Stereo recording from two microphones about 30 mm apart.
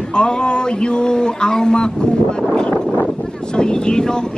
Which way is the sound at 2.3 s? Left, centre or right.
Left.